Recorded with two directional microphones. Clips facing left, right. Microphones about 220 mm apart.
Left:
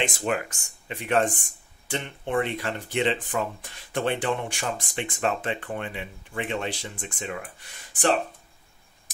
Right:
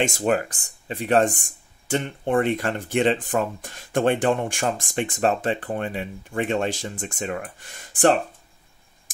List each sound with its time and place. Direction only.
0.0 s speech: 45° right (ahead or behind)